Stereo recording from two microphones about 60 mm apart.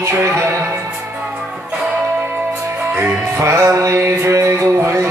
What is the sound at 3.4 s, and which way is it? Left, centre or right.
Music, right.